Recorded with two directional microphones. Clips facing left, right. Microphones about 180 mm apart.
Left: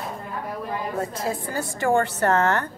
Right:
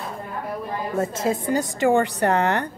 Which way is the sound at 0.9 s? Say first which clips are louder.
Right 7 dB; 20° right (ahead or behind).